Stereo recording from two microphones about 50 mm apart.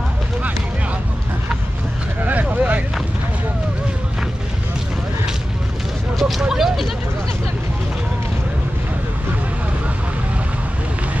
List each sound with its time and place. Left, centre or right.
2.2 s vehicle: right
6.1 s a sound: centre
6.4 s goat: centre